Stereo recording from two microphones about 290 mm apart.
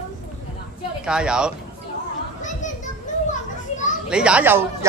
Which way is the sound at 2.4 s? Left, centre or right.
Left.